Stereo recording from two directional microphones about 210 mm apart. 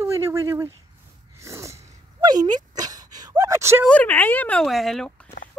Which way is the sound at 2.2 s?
20° right (ahead or behind).